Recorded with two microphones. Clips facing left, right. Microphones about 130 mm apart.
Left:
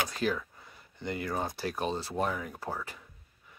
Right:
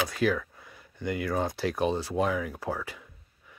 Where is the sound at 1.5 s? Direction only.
15° right (ahead or behind).